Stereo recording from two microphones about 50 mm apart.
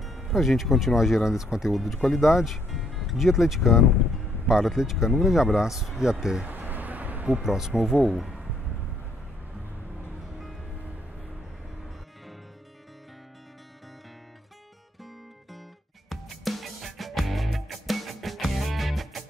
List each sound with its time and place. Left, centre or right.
0.3 s speech: centre
6.4 s a sound: right
7.4 s speech: centre
16.1 s music: centre